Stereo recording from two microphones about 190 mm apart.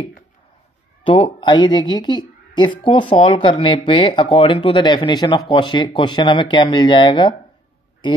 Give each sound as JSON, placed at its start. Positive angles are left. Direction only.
{"t": 1.0, "sound": "speech", "side_deg": 25}